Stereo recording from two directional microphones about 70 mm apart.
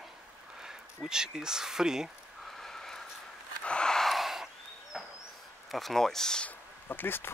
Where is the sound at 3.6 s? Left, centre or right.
Centre.